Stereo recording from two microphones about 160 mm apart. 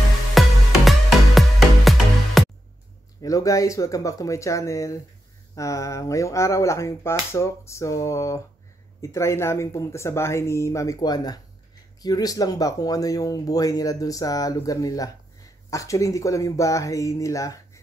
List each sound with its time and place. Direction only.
0.3 s music: centre (ahead or behind)
3.2 s speech: 20° left (ahead or behind)